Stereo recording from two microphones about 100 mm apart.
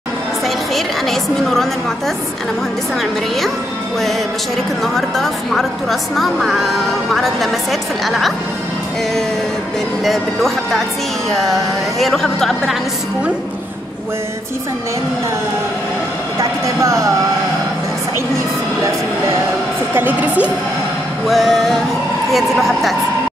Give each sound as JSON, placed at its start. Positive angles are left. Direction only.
{"t": 0.7, "sound": "a woman's voice", "side_deg": 5}
{"t": 3.0, "sound": "a woman's voice", "side_deg": 0}
{"t": 4.8, "sound": "a woman's voice", "side_deg": 5}
{"t": 10.0, "sound": "a woman's voice", "side_deg": 0}
{"t": 16.3, "sound": "speech", "side_deg": -30}
{"t": 19.9, "sound": "a woman's voice", "side_deg": -20}
{"t": 21.3, "sound": "a woman's voice", "side_deg": 0}